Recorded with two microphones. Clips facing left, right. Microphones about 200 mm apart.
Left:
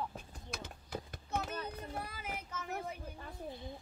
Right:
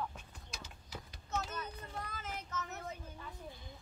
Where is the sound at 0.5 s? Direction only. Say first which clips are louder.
Left 7 dB; 55° left (ahead or behind).